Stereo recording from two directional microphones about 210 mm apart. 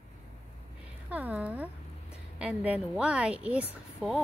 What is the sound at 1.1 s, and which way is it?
A woman's voice, 5° right (ahead or behind).